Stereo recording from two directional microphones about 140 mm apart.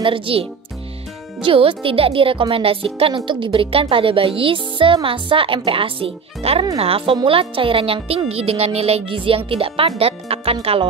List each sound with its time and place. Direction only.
0.0 s speech: 40° right (ahead or behind)